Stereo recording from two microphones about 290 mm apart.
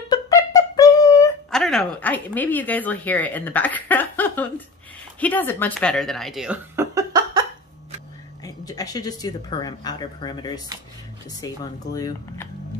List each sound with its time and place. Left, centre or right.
0.1 s a sound: centre
5.2 s speech: centre
8.5 s speech: centre